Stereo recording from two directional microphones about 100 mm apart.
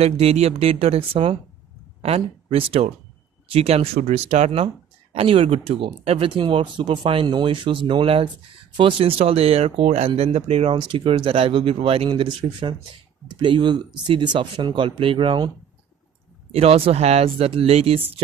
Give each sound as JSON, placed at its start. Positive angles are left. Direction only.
{"t": 0.0, "sound": "speech", "side_deg": -90}
{"t": 2.0, "sound": "speech", "side_deg": -75}
{"t": 5.1, "sound": "speech", "side_deg": -65}
{"t": 10.8, "sound": "speech", "side_deg": -60}
{"t": 16.5, "sound": "speech", "side_deg": -80}